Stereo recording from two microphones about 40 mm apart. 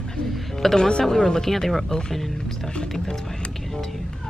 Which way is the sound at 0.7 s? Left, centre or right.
Centre.